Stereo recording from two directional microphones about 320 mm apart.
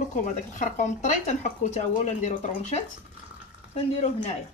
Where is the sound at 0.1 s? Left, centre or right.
Left.